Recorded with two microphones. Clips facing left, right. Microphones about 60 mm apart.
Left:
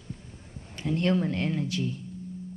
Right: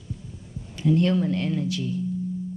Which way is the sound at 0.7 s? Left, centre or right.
Left.